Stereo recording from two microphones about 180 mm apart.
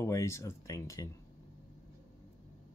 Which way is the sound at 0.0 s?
15° left (ahead or behind).